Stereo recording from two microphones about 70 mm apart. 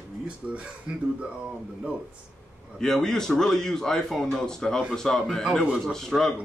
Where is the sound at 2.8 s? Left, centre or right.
Centre.